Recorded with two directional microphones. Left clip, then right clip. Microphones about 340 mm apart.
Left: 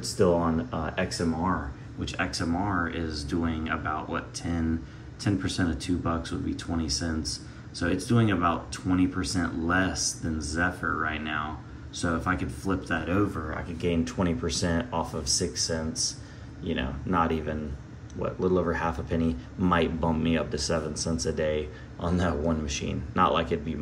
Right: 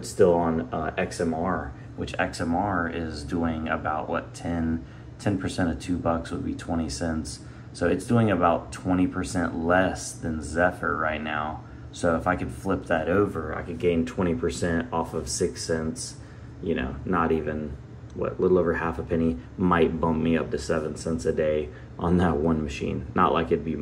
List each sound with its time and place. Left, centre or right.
0.0 s speech: centre